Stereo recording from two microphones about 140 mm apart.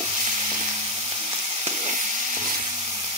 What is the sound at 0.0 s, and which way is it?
Frying, 40° right (ahead or behind).